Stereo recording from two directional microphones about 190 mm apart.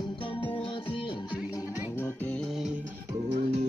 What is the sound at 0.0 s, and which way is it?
Music, 25° left (ahead or behind).